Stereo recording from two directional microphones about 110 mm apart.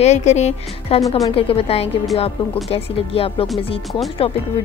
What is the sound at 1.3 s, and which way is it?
A woman's voice, 60° left (ahead or behind).